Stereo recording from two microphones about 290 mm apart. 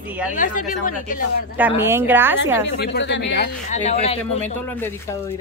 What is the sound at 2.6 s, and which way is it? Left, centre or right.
Speech, left.